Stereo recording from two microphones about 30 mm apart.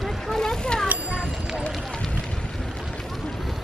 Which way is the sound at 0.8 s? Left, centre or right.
Right.